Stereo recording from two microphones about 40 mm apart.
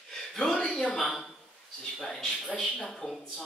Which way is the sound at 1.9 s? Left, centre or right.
Centre.